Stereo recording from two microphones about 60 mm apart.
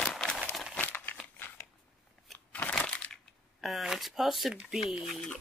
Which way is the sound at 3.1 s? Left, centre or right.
Centre.